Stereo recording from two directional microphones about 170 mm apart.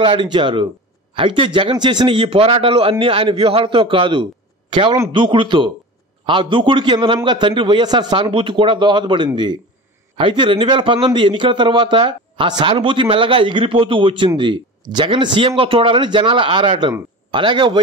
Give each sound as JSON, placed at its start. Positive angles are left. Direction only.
{"t": 0.0, "sound": "a man's voice", "side_deg": -25}